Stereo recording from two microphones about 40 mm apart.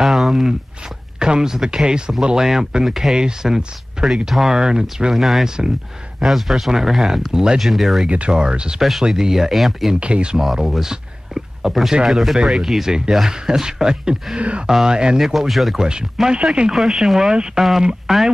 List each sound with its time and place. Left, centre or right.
0.0 s a sound: centre
1.2 s speech: centre
4.6 s speech: centre
5.1 s speech: centre
8.1 s speech: right
9.1 s speech: centre
9.9 s speech: right
10.4 s speech: centre
12.1 s speech: centre; by 15.1 s right
15.1 s speech: centre
15.8 s speech: centre
16.7 s speech: centre